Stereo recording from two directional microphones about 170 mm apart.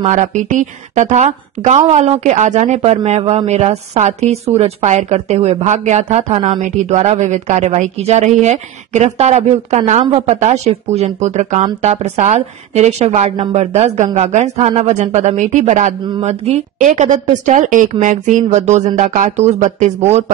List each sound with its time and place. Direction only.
0.0 s speech: 45° right (ahead or behind)